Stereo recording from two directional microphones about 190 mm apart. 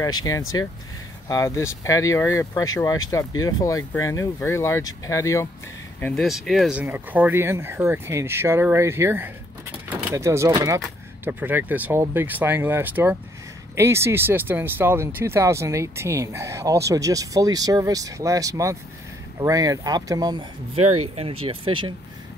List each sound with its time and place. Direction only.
0.0 s speech: 20° left (ahead or behind)
5.9 s speech: 5° left (ahead or behind); by 9.3 s 10° right (ahead or behind)
9.8 s vehicle: 15° right (ahead or behind)
10.5 s speech: 20° right (ahead or behind)